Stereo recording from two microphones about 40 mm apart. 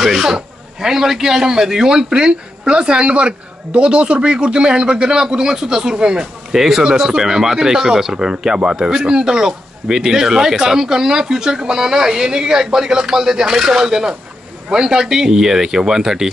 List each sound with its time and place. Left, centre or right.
0.0 s speech: centre
6.5 s speech: centre